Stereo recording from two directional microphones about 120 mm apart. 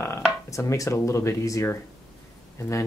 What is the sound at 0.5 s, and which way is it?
Speech, 25° left (ahead or behind).